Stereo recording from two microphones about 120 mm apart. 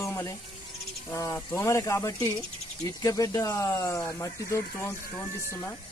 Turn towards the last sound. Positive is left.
turn(degrees=25)  # may be behind; listen again after turning